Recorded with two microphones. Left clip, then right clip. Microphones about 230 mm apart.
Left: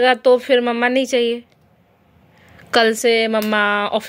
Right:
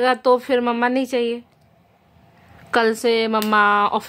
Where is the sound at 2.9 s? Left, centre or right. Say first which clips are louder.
Left 3 dB; centre.